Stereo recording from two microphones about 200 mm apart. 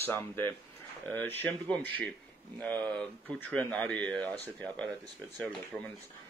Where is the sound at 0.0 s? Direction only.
10° left (ahead or behind).